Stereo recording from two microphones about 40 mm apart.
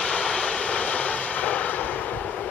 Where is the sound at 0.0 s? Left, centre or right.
Left.